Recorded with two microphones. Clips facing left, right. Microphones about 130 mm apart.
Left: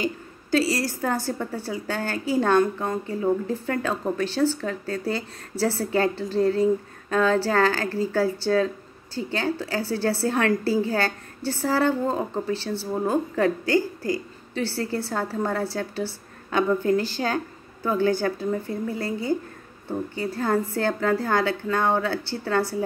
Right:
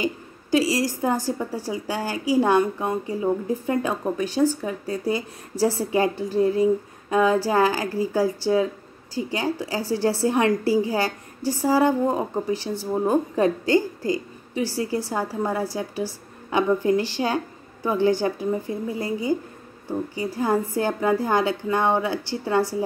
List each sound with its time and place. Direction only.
0.0 s a woman's voice: 15° right (ahead or behind)
20.3 s a woman's voice: 15° right (ahead or behind)